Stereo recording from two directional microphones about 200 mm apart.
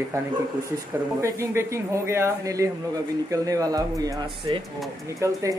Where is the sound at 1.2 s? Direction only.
15° right (ahead or behind).